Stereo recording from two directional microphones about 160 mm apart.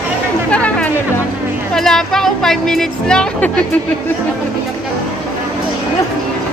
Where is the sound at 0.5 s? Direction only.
10° left (ahead or behind).